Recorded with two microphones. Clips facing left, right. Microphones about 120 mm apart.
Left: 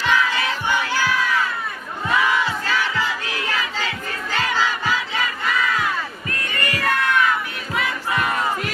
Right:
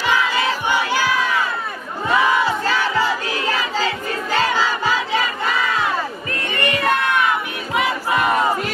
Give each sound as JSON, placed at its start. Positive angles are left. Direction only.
{"t": 0.7, "sound": "crowd", "side_deg": -15}
{"t": 2.0, "sound": "battle cry", "side_deg": -30}